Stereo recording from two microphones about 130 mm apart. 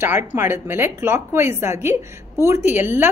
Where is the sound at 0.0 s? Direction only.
15° right (ahead or behind).